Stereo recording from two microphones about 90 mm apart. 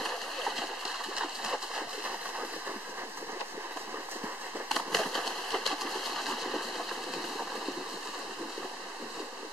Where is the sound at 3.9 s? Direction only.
25° right (ahead or behind).